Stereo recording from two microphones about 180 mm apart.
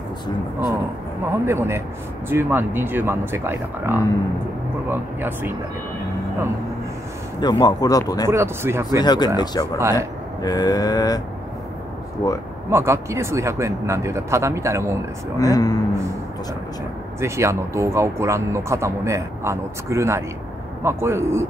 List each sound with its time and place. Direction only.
1.2 s speech: 15° right (ahead or behind)
7.3 s speech: 20° left (ahead or behind)
8.3 s speech: 15° right (ahead or behind)
9.0 s speech: 25° left (ahead or behind)
9.8 s speech: 15° right (ahead or behind)
10.4 s speech: 20° left (ahead or behind)
12.2 s speech: 15° left (ahead or behind)
12.6 s speech: 15° right (ahead or behind)
15.3 s speech: 20° left (ahead or behind)
17.2 s speech: 15° right (ahead or behind)